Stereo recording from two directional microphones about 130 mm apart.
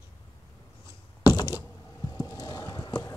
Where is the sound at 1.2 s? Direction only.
25° left (ahead or behind).